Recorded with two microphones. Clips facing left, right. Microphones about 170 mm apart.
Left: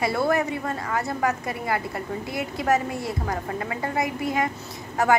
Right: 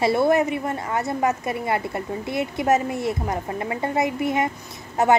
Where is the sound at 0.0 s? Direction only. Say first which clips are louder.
Right 4 dB; 25° right (ahead or behind).